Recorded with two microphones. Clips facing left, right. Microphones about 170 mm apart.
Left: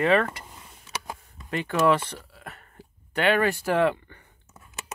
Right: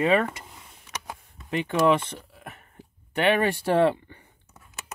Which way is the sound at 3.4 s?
30° right (ahead or behind).